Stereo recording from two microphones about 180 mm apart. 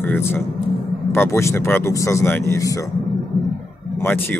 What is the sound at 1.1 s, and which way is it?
Speech, 15° left (ahead or behind).